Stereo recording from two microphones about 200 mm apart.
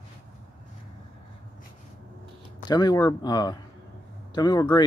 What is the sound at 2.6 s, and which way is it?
Speech, 20° left (ahead or behind).